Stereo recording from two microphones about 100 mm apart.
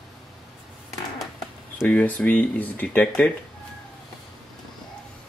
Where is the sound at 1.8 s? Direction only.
15° left (ahead or behind).